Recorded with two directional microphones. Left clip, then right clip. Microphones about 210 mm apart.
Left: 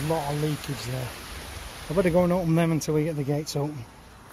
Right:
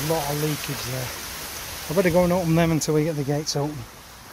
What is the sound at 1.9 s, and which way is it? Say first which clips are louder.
Speech: right 3 dB; centre (ahead or behind).